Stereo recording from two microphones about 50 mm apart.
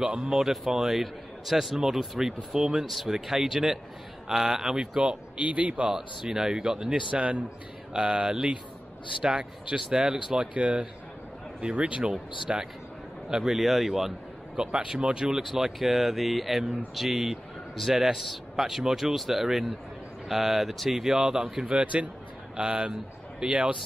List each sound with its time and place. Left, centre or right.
0.0 s a man's voice: centre
5.4 s speech: right
5.9 s a man's voice: centre
21.7 s speech: right